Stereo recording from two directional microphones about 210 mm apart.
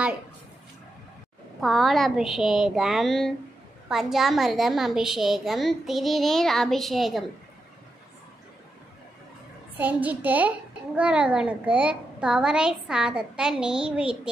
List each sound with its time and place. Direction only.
1.6 s a woman's voice: centre (ahead or behind)
9.8 s a child's voice: 10° right (ahead or behind)